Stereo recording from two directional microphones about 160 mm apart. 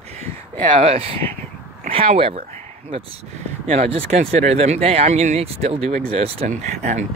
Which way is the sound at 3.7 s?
40° right (ahead or behind).